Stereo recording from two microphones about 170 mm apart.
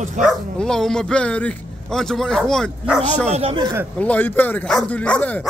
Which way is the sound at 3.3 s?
35° right (ahead or behind).